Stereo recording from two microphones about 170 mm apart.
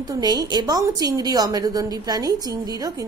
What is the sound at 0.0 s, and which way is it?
A woman's voice, 25° right (ahead or behind).